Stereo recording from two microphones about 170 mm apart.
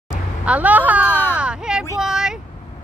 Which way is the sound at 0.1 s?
10° right (ahead or behind).